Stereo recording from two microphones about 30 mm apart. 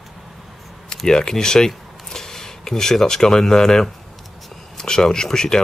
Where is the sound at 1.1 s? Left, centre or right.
Left.